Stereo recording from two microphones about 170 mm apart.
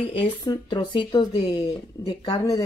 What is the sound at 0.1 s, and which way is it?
Speech, 30° left (ahead or behind).